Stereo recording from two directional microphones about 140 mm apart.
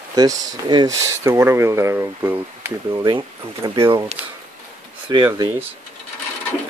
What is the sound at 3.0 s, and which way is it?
Speech, 30° right (ahead or behind).